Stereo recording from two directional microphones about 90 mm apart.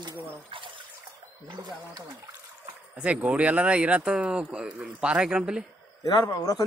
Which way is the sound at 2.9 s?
15° right (ahead or behind).